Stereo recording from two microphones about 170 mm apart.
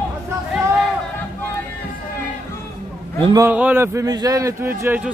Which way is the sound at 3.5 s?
10° right (ahead or behind).